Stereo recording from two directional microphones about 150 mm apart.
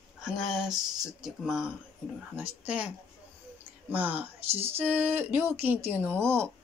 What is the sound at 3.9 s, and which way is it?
A woman's voice, 10° right (ahead or behind).